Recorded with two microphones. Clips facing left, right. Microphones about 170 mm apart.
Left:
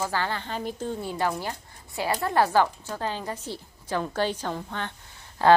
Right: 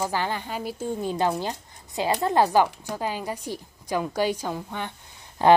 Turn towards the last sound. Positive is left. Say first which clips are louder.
# right 1 dB
turn(degrees=-15)  # may be behind; listen again after turning